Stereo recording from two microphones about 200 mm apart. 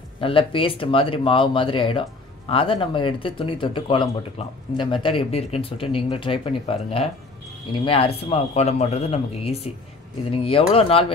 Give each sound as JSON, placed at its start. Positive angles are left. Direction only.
{"t": 0.2, "sound": "speech", "side_deg": 25}